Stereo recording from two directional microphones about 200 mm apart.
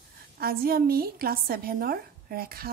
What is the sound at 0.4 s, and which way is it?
A woman's voice, 50° right (ahead or behind).